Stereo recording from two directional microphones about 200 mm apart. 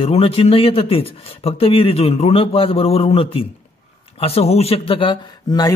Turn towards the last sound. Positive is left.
turn(degrees=20)  # may be behind; listen again after turning